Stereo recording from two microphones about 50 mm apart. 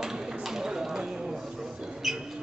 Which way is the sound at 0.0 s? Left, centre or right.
Centre.